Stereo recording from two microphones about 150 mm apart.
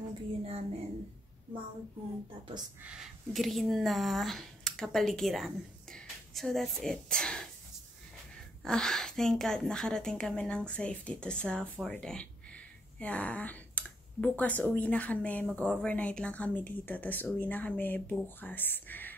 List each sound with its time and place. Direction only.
0.4 s speech: 45° right (ahead or behind)
2.8 s speech: 5° right (ahead or behind)
8.6 s a woman's voice: 5° left (ahead or behind)